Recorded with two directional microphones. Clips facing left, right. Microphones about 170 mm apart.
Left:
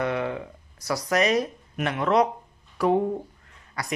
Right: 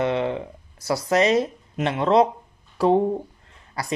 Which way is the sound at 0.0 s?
25° right (ahead or behind).